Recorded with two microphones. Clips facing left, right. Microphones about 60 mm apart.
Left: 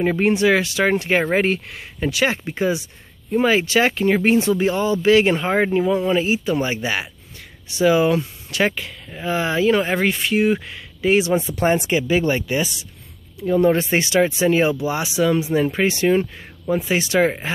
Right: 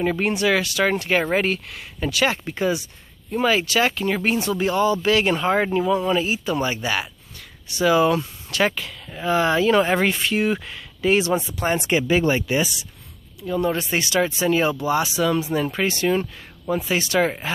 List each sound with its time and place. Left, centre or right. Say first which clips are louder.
0.0 s speech: left 4 dB; centre
11.9 s speech: even; centre
13.4 s speech: left 6 dB; left